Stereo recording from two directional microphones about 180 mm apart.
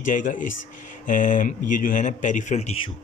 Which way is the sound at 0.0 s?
45° left (ahead or behind).